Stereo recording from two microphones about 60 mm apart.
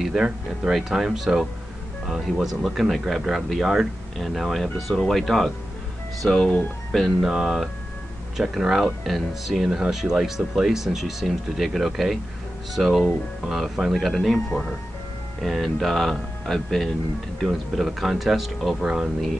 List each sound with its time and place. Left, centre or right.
0.0 s speech: centre
18.8 s speech: centre